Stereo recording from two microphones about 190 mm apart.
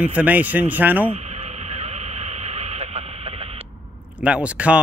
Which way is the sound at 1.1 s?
35° right (ahead or behind).